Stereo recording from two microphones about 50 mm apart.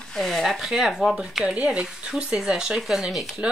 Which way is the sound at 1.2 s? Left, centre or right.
Centre.